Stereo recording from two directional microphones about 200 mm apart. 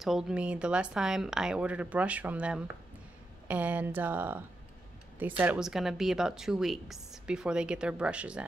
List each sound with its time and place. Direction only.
0.0 s a woman's voice: 5° right (ahead or behind)